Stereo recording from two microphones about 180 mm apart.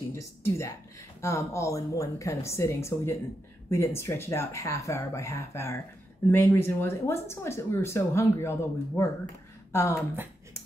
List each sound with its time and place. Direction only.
0.1 s speech: 15° left (ahead or behind)